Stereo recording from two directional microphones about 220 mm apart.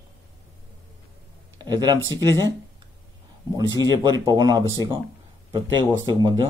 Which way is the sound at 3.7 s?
20° right (ahead or behind).